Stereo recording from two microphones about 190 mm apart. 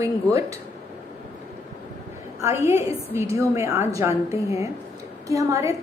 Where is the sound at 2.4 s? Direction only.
15° right (ahead or behind).